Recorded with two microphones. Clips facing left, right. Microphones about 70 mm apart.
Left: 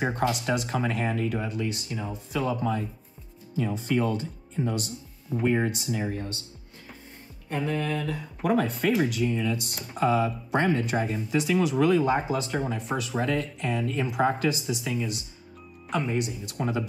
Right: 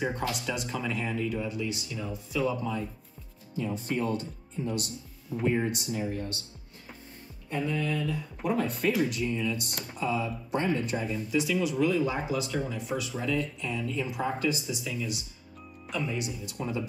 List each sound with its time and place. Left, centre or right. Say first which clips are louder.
0.3 s speech: left 5 dB; left
3.6 s speech: left 4 dB; left
5.5 s speech: left 2 dB; left
7.4 s speech: left 2 dB; left
9.9 s speech: left 7 dB; left
11.0 s speech: left 3 dB; left